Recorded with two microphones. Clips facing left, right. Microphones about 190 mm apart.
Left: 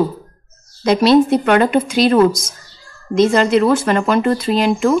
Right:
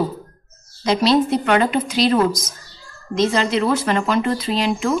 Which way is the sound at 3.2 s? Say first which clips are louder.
Left 6 dB; 50° left (ahead or behind).